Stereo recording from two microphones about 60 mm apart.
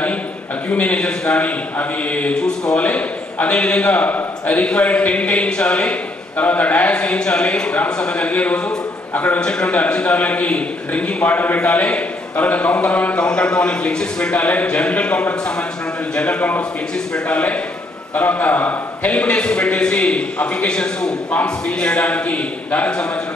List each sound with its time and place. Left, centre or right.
0.7 s a man's voice: left
2.3 s speech: centre
2.8 s a man's voice: left
9.4 s a man's voice: centre